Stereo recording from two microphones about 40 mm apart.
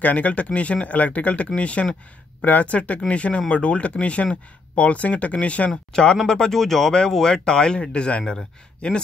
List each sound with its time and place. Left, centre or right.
0.0 s speech: left
2.4 s speech: left
6.2 s speech: centre; by 9.0 s left